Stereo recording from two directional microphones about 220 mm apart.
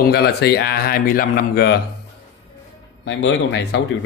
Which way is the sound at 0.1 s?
45° left (ahead or behind).